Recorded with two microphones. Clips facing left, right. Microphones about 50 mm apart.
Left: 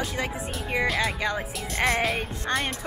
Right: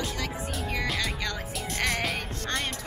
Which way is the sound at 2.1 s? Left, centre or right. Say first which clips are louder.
Left 4 dB; centre.